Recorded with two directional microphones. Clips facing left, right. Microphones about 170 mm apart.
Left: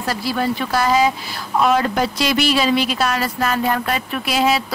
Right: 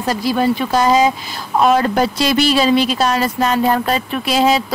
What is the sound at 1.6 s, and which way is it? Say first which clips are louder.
Speech: right 3 dB; 35° right (ahead or behind).